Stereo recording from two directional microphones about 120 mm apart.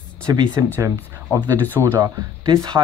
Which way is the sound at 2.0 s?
35° right (ahead or behind).